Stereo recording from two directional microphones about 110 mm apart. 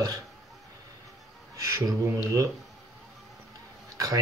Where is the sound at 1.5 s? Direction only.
35° right (ahead or behind).